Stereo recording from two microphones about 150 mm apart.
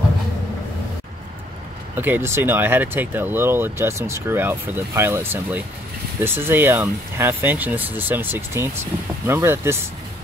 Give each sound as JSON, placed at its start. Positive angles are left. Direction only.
{"t": 2.0, "sound": "speech", "side_deg": -15}